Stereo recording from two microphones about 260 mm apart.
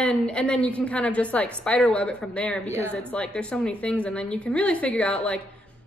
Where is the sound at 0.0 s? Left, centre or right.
Centre.